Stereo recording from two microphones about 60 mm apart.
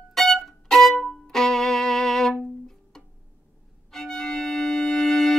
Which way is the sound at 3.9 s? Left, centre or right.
Centre.